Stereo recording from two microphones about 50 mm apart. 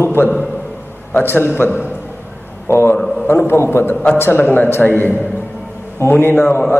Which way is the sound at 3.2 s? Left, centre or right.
Left.